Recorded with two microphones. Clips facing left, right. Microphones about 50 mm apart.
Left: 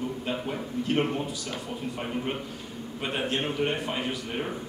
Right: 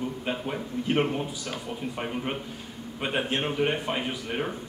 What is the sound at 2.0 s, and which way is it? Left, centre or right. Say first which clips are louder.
Speech: even; centre.